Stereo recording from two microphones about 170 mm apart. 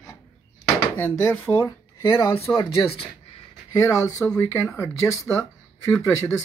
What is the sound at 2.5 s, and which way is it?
Speech, 30° left (ahead or behind).